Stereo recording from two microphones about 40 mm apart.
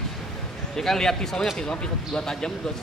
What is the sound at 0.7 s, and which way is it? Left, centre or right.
Speech, centre.